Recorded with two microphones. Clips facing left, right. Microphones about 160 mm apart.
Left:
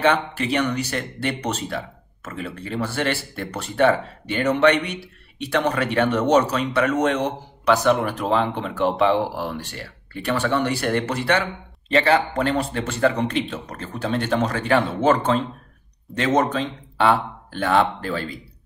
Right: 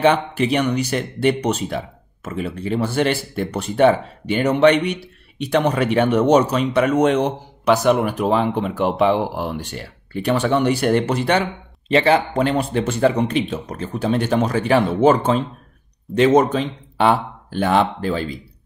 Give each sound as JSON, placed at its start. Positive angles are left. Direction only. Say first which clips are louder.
{"t": 0.0, "sound": "speech", "louder": "right 4 dB", "side_deg": -15}